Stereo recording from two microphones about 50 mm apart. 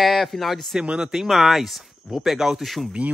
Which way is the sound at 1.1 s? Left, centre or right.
Centre.